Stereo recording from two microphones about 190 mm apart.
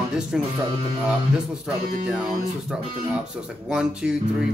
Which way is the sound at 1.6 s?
5° right (ahead or behind).